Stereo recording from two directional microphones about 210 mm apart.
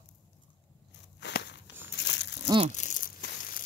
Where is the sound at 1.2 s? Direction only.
55° left (ahead or behind).